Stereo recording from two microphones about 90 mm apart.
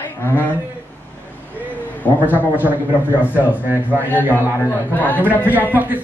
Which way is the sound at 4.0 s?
20° left (ahead or behind).